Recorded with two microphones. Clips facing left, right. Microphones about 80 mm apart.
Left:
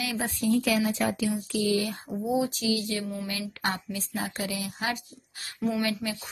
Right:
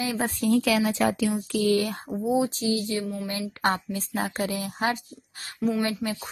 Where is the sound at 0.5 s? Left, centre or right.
Right.